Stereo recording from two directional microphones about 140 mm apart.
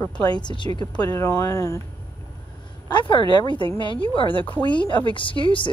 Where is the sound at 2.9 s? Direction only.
35° left (ahead or behind).